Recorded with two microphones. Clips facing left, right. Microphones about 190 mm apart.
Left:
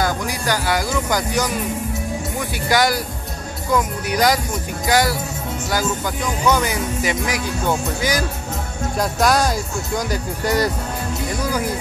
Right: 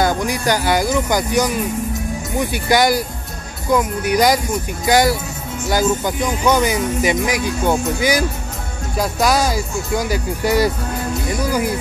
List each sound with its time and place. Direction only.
0.0 s speech: 20° right (ahead or behind)
2.5 s speech: 15° right (ahead or behind)